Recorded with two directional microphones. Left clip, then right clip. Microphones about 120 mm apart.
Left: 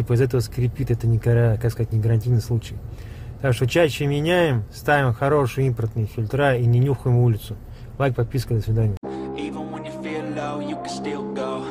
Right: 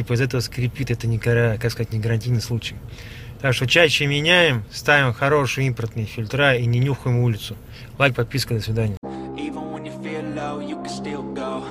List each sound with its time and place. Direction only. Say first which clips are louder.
0.1 s speech: left 1 dB; 50° left (ahead or behind)
8.0 s speech: right 4 dB; 30° left (ahead or behind)
9.0 s music: left 1 dB; centre (ahead or behind)